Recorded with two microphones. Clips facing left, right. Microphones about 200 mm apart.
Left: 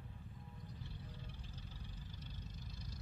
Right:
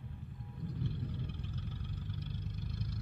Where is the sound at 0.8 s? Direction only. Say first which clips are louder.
Right 15 dB; 65° right (ahead or behind).